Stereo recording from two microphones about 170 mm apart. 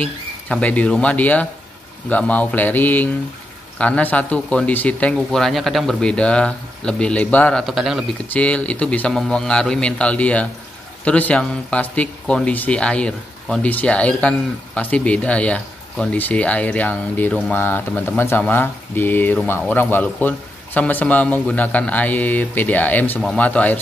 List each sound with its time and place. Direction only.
0.0 s speech: 10° left (ahead or behind)